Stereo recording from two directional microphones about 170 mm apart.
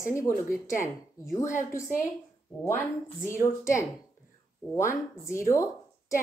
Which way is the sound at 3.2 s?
15° left (ahead or behind).